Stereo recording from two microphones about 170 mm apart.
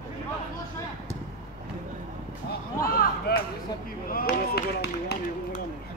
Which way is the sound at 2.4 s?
60° left (ahead or behind).